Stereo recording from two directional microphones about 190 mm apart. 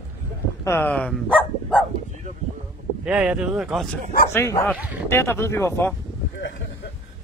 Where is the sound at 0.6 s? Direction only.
10° left (ahead or behind).